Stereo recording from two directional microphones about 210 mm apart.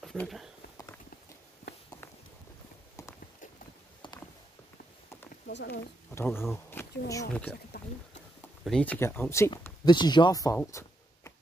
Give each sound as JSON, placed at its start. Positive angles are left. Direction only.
{"t": 0.0, "sound": "a sound", "side_deg": 0}
{"t": 5.5, "sound": "speech", "side_deg": 55}
{"t": 6.1, "sound": "speech", "side_deg": 10}
{"t": 8.6, "sound": "speech", "side_deg": 5}